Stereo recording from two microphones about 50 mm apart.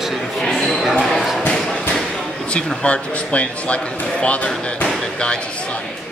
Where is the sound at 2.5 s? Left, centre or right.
Left.